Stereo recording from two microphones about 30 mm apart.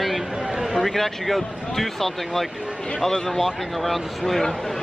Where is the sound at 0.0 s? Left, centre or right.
Centre.